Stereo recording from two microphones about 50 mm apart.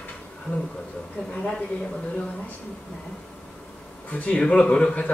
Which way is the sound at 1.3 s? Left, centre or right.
Centre.